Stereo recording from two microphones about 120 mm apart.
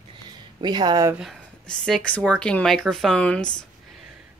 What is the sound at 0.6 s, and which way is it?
Speech, 35° right (ahead or behind).